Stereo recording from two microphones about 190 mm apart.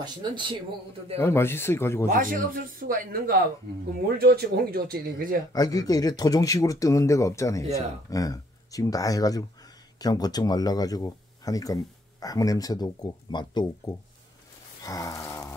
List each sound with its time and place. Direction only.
0.0 s speech: 25° right (ahead or behind)
1.1 s speech: 15° left (ahead or behind)
2.0 s speech: 45° right (ahead or behind)
5.5 s speech: 20° left (ahead or behind)
14.8 s a sound: 20° left (ahead or behind)